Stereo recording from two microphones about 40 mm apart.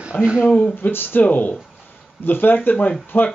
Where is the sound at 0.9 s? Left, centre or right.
Left.